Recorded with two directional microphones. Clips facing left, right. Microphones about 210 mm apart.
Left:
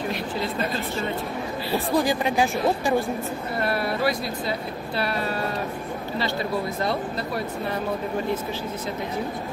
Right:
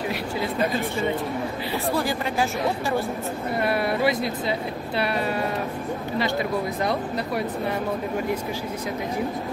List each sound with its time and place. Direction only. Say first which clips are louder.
0.1 s speech: right 1 dB; 15° right (ahead or behind)
1.9 s speech: left 3 dB; 15° left (ahead or behind)
3.6 s speech: right 2 dB; 20° right (ahead or behind)
6.8 s speech: right 1 dB; 15° right (ahead or behind)